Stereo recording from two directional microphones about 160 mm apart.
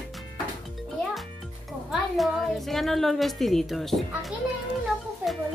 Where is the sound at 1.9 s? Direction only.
Centre (ahead or behind).